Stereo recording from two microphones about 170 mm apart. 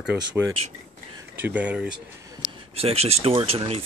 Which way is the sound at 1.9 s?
20° right (ahead or behind).